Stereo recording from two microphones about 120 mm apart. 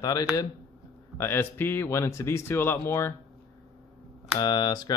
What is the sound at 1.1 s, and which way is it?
Speech, 20° left (ahead or behind).